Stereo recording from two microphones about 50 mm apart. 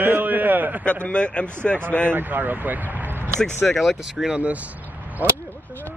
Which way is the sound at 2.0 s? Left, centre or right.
Right.